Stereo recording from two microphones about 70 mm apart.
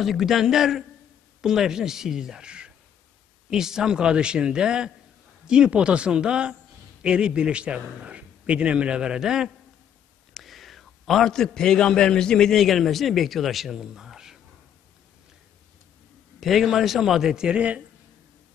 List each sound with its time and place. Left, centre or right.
0.0 s a man's voice: centre
10.3 s a man's voice: centre
16.3 s a man's voice: centre